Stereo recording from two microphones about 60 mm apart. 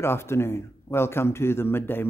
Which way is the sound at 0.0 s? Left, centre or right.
Left.